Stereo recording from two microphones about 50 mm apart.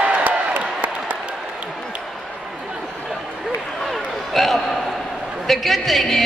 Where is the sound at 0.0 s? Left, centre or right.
Right.